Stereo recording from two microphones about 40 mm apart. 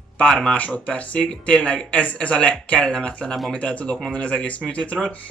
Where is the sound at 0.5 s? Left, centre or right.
Left.